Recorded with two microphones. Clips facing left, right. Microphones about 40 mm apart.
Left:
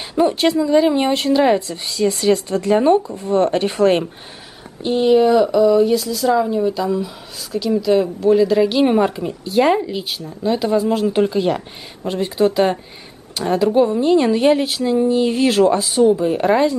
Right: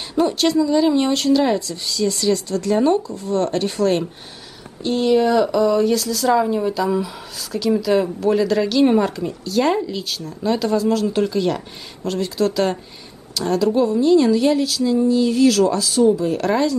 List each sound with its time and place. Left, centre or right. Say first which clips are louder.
0.1 s speech: left 2 dB; left
4.8 s speech: left 3 dB; centre
6.4 s speech: left 2 dB; centre
7.8 s speech: left 2 dB; centre
8.6 s speech: left 1 dB; centre
10.4 s speech: left 1 dB; centre
10.7 s a woman's voice: left 2 dB; left